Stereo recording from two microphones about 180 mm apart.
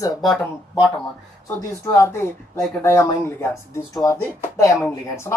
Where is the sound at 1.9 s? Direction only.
15° left (ahead or behind).